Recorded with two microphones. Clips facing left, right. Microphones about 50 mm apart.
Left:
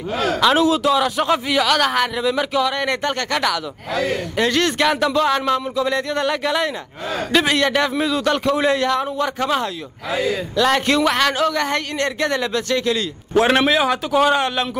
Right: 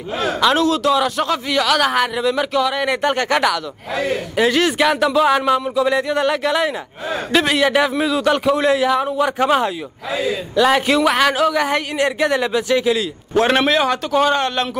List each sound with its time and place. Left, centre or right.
0.6 s a man's voice: centre
13.5 s a man's voice: centre